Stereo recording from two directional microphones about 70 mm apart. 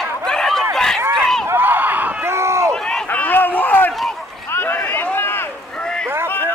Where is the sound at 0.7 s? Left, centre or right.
Centre.